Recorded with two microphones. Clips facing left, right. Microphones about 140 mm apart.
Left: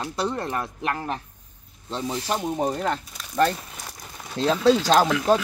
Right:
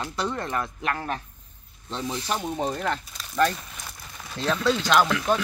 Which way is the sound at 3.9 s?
20° left (ahead or behind).